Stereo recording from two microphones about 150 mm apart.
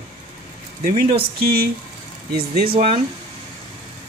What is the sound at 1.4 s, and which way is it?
Speech, 90° right.